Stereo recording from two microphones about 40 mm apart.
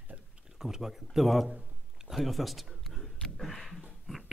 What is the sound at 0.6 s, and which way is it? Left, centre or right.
Speech, centre.